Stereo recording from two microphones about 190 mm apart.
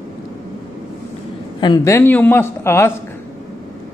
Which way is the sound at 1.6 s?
20° left (ahead or behind).